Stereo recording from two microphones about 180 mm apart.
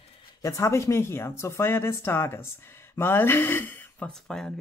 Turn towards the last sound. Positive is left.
turn(degrees=5)  # may be behind; listen again after turning